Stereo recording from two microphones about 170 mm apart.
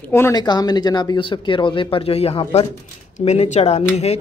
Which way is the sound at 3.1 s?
40° left (ahead or behind).